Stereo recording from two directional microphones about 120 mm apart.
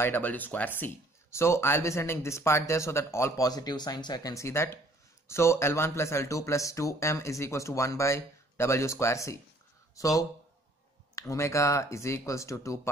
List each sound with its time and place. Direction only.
0.0 s speech: 15° left (ahead or behind)